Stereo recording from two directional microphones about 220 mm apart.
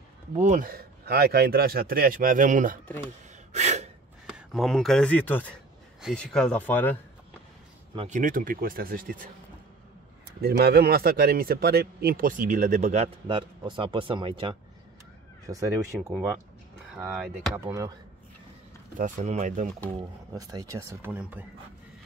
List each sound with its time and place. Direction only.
0.4 s a man's voice: 35° right (ahead or behind)
3.5 s gasp: 30° right (ahead or behind)
4.3 s speech: centre (ahead or behind)
7.9 s speech: 25° right (ahead or behind)
8.2 s a man's voice: 40° right (ahead or behind)
10.4 s a man's voice: 45° right (ahead or behind); by 17.9 s 15° right (ahead or behind)
18.9 s a man's voice: 35° right (ahead or behind)
20.0 s speech: 15° right (ahead or behind)